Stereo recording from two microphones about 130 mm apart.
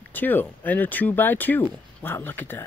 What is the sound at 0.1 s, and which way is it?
Speech, 15° left (ahead or behind).